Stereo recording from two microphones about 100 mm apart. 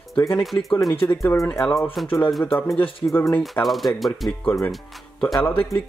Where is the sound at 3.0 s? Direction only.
20° left (ahead or behind).